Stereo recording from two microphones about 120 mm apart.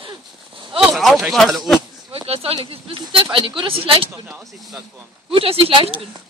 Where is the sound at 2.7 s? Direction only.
45° right (ahead or behind).